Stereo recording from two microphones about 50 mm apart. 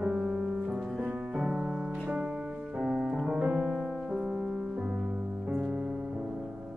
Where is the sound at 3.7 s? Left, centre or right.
Centre.